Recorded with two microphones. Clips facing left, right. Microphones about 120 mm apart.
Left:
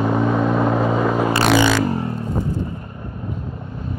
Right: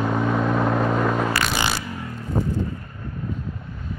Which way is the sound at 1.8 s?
30° left (ahead or behind).